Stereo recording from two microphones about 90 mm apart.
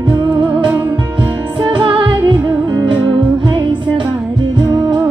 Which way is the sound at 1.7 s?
60° right (ahead or behind).